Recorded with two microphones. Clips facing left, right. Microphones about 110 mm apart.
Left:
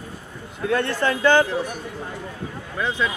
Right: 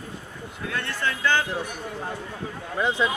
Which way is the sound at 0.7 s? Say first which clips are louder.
Left 8 dB; 35° left (ahead or behind).